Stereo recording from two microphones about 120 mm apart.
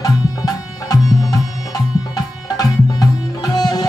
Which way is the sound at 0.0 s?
30° left (ahead or behind).